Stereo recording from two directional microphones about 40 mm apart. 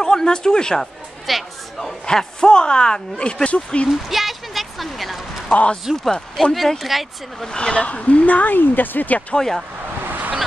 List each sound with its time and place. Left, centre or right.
0.0 s speech: centre
0.7 s a sound: centre
2.0 s speech: centre
3.9 s speech: centre
5.5 s speech: left
6.3 s speech: centre
7.4 s speech: centre
7.7 s speech: left
10.0 s vehicle: right